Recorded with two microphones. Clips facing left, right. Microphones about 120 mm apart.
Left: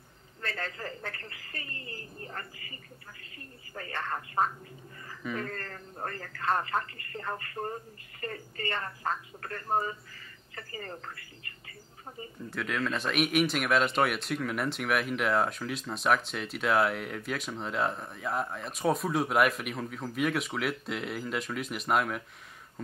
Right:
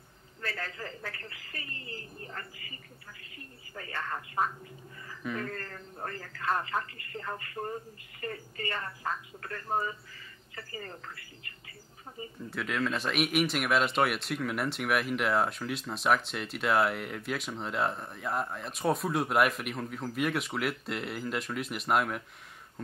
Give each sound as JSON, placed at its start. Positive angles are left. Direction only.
{"t": 0.4, "sound": "a sound", "side_deg": 25}
{"t": 1.0, "sound": "speech", "side_deg": 35}
{"t": 3.9, "sound": "a man's voice", "side_deg": 40}
{"t": 10.1, "sound": "bird", "side_deg": 45}
{"t": 12.4, "sound": "speech", "side_deg": 0}